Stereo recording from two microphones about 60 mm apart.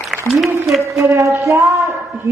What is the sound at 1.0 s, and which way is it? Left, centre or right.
Speech, right.